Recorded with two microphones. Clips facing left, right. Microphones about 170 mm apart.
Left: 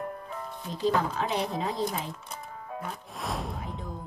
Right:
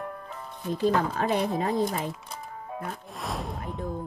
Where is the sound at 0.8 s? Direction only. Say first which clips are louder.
Right 2 dB; 50° right (ahead or behind).